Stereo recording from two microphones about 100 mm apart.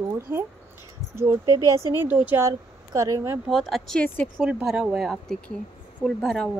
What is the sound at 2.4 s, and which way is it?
Speech, 35° right (ahead or behind).